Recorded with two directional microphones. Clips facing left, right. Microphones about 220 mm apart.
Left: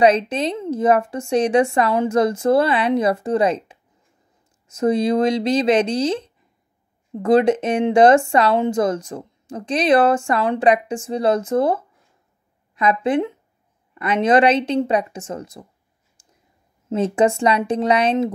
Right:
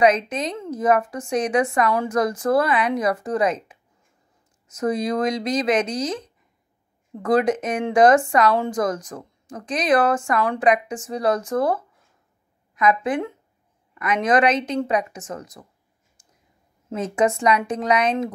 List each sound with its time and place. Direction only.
0.0 s speech: 30° left (ahead or behind)
16.2 s a sound: 30° left (ahead or behind)
16.9 s speech: 30° left (ahead or behind)